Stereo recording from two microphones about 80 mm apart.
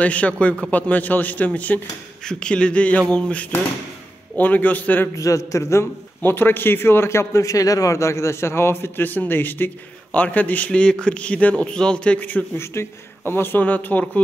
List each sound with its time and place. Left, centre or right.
0.0 s a man's voice: centre
5.1 s a man's voice: left